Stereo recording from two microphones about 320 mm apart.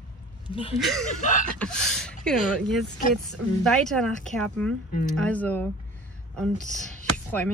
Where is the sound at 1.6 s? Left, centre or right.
Centre.